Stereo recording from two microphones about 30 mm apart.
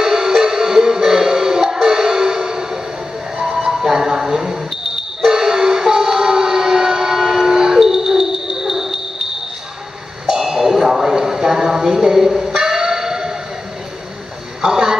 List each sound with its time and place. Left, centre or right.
0.0 s music: right
3.6 s smoke detector: centre
7.8 s music: centre
10.2 s a sound: centre
12.4 s music: right
14.6 s a sound: right